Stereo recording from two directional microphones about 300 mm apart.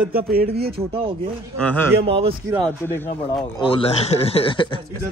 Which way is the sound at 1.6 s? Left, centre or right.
Centre.